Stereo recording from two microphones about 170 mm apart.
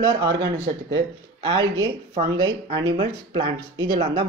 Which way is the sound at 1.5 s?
30° right (ahead or behind).